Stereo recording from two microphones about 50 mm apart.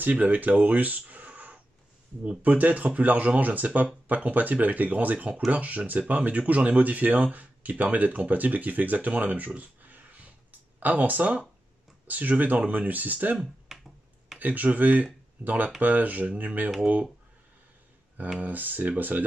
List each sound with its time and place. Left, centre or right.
0.0 s speech: right
13.7 s finger snapping: centre
14.4 s speech: right
18.4 s speech: right